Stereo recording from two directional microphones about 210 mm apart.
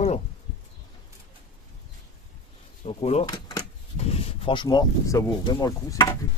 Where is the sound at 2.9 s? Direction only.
30° left (ahead or behind).